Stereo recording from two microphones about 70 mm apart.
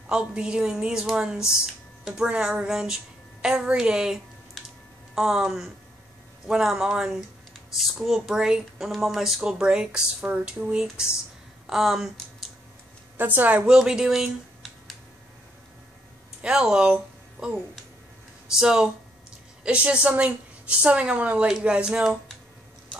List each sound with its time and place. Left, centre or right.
0.1 s a woman's voice: centre
9.4 s a woman's voice: centre
13.2 s a woman's voice: right
13.7 s a woman's voice: centre
16.4 s a woman's voice: centre